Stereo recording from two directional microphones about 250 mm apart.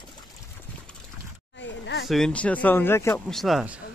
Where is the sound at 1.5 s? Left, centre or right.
Left.